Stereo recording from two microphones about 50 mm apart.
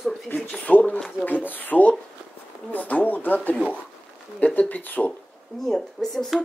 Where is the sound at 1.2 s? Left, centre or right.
Left.